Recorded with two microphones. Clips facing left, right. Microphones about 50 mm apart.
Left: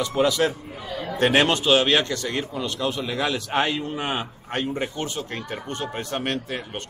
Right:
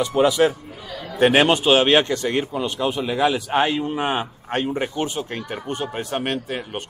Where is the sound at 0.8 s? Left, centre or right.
Centre.